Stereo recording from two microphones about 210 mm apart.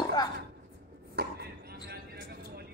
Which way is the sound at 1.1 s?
50° right (ahead or behind).